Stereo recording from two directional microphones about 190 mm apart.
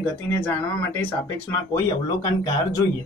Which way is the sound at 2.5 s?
15° left (ahead or behind).